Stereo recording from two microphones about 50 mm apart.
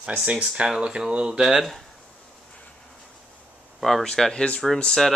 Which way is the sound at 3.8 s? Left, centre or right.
Centre.